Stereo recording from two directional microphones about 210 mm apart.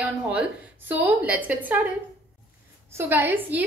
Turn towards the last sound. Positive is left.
turn(degrees=-10)  # may be behind; listen again after turning